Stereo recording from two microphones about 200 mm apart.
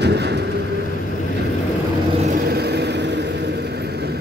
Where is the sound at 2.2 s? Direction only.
40° right (ahead or behind).